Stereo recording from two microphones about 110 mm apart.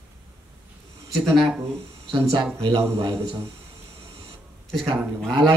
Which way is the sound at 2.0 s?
55° right (ahead or behind).